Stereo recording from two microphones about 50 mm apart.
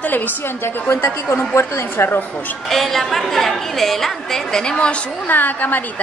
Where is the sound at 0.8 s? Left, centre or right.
Left.